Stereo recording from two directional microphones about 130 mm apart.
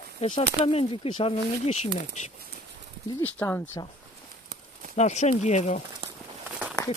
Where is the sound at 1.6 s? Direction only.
65° left (ahead or behind).